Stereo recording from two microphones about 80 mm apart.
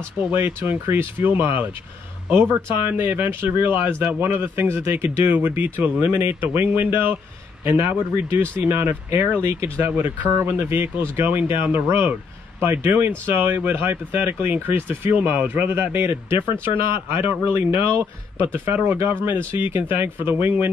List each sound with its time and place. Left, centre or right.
0.3 s speech: right